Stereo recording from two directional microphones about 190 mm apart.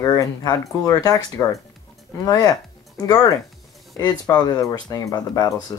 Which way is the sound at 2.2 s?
20° left (ahead or behind).